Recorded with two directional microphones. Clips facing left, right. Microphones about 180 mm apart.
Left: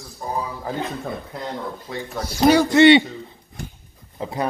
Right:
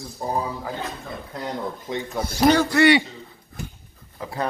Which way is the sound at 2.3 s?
5° left (ahead or behind).